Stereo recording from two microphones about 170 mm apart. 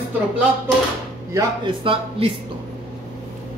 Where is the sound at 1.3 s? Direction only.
30° right (ahead or behind).